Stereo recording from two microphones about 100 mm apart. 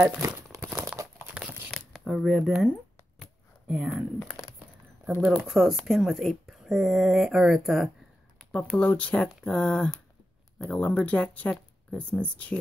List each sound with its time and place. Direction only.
0.2 s crumpling: 25° right (ahead or behind)
1.4 s tearing: 10° right (ahead or behind)
1.7 s speech: centre (ahead or behind)
5.2 s speech: 5° right (ahead or behind)
8.4 s a sound: 10° left (ahead or behind)
8.7 s speech: 10° left (ahead or behind)